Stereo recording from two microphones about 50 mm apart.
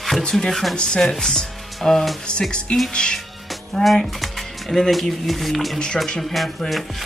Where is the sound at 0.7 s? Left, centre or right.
Centre.